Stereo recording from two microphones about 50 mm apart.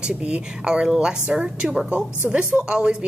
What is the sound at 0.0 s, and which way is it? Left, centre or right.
Speech, centre.